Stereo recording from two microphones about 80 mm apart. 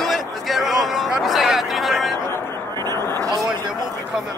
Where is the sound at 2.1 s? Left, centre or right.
Left.